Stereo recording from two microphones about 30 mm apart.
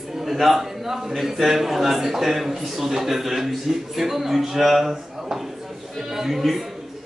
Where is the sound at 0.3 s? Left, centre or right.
Centre.